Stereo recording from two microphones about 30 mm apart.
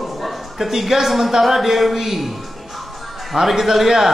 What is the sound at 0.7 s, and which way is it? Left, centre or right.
A man's voice, centre.